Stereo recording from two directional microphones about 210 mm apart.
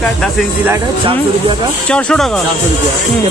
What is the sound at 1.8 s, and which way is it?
Speech, 5° left (ahead or behind).